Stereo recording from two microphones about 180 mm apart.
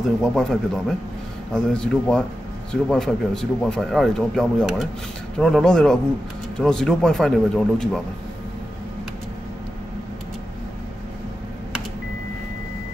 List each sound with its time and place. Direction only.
0.2 s speech: centre (ahead or behind)